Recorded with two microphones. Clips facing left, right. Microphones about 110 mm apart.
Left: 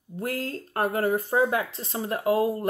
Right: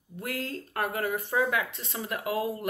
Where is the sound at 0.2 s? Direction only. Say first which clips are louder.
Left 4 dB; 35° left (ahead or behind).